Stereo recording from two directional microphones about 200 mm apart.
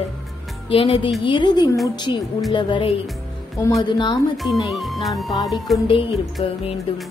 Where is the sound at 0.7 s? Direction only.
25° left (ahead or behind).